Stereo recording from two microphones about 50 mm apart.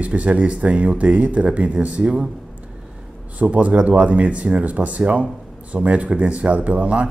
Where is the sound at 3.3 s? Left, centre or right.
Right.